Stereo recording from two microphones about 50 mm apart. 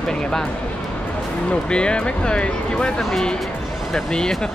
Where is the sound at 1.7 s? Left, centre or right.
Centre.